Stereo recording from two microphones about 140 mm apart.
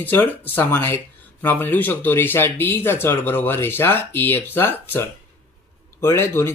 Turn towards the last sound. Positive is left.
turn(degrees=15)  # may be behind; listen again after turning